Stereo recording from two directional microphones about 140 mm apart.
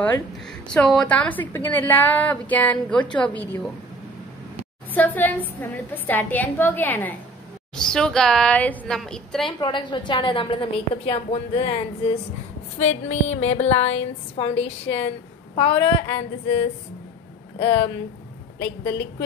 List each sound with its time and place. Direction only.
0.0 s a woman's voice: 10° left (ahead or behind)
4.9 s a woman's voice: 10° left (ahead or behind)
9.6 s a woman's voice: 35° left (ahead or behind)
12.7 s a woman's voice: 55° left (ahead or behind); by 17.9 s 40° left (ahead or behind)